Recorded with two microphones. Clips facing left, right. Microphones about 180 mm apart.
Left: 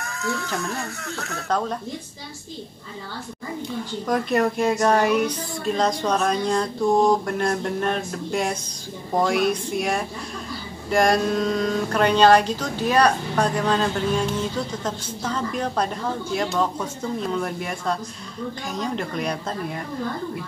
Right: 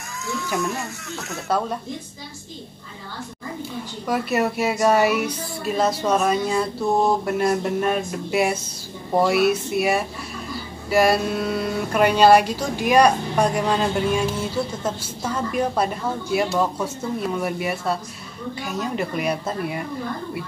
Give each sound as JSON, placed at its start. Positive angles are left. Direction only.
{"t": 0.0, "sound": "a sound", "side_deg": 60}
{"t": 1.5, "sound": "speech", "side_deg": -10}
{"t": 4.1, "sound": "speech", "side_deg": -5}